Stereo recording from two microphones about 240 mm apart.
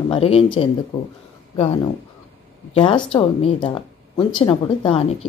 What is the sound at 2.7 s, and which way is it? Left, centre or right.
Speech, left.